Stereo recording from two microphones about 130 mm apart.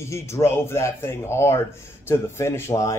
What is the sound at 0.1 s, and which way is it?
A man's voice, 20° left (ahead or behind).